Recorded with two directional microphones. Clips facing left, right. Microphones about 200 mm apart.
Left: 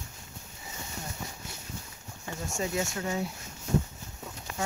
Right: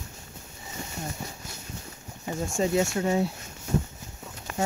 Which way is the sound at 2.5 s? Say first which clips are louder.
Right 7 dB; 30° right (ahead or behind).